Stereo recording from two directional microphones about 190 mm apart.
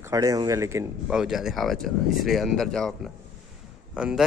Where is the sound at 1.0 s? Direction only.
5° right (ahead or behind).